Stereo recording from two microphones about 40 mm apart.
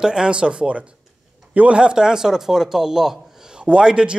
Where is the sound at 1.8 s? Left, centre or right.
Right.